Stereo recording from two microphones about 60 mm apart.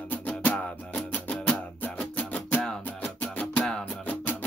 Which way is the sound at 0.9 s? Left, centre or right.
Left.